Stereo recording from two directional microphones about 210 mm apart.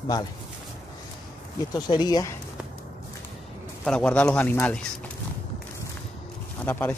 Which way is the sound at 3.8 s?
5° left (ahead or behind).